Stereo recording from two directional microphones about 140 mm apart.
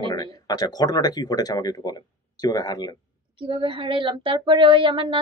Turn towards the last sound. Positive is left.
turn(degrees=-40)  # may be behind; listen again after turning